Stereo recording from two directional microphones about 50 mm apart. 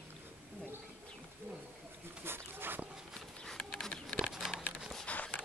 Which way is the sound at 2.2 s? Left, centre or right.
Right.